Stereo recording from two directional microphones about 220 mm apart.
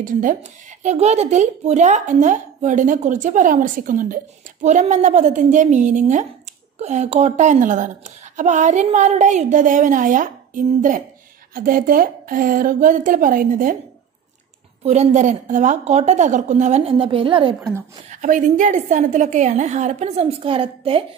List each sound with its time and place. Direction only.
0.0 s speech: 35° right (ahead or behind)
14.8 s speech: 30° right (ahead or behind)
18.1 s speech: 35° right (ahead or behind)